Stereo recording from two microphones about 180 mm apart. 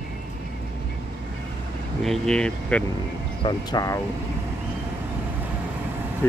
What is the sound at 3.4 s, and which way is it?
Speech, 25° left (ahead or behind).